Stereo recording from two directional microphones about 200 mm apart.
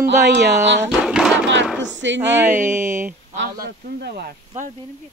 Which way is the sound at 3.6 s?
50° right (ahead or behind).